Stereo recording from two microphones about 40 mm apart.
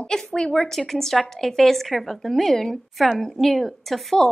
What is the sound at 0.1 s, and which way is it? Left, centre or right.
A woman's voice, centre.